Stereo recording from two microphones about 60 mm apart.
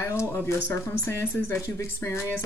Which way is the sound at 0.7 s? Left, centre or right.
Left.